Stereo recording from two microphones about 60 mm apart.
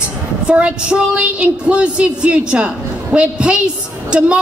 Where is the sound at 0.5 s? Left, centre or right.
Centre.